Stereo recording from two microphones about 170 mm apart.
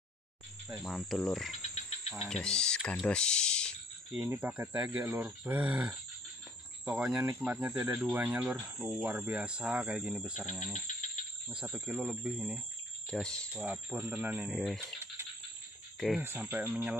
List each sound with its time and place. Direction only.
0.7 s insect: 5° right (ahead or behind)
1.6 s insect: 40° left (ahead or behind)
2.2 s speech: 5° left (ahead or behind)
4.1 s speech: 10° right (ahead or behind)
11.6 s speech: 10° right (ahead or behind)
13.1 s insect: 5° left (ahead or behind)
13.7 s speech: 10° right (ahead or behind)
14.6 s insect: centre (ahead or behind)
15.2 s a sound: 15° right (ahead or behind)
16.2 s speech: 10° right (ahead or behind)